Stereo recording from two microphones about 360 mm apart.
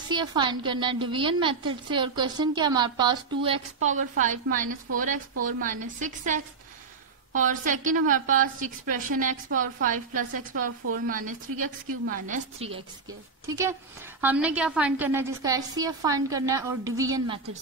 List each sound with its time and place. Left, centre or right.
0.1 s a woman's voice: centre